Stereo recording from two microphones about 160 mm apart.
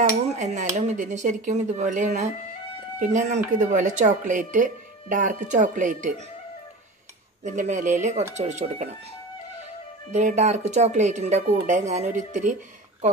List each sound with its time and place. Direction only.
0.3 s speech: 45° right (ahead or behind)
7.4 s speech: 50° right (ahead or behind)
10.1 s speech: 45° right (ahead or behind)